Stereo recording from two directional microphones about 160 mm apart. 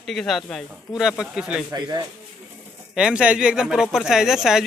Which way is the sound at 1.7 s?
25° right (ahead or behind).